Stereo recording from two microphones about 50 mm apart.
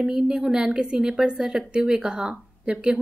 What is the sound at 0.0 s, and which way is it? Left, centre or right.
Speech, centre.